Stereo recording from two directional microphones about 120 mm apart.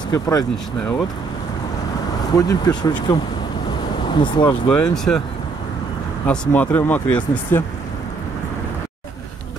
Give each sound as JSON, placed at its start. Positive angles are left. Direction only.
{"t": 0.1, "sound": "speech", "side_deg": 35}
{"t": 2.3, "sound": "speech", "side_deg": 35}
{"t": 4.6, "sound": "speech", "side_deg": 5}
{"t": 6.2, "sound": "speech", "side_deg": 10}